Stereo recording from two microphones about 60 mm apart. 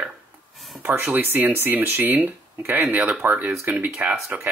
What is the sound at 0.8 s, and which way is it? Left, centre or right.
Speech, right.